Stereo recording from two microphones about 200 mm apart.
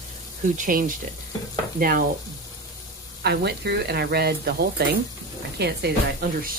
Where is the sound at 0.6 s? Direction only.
45° right (ahead or behind).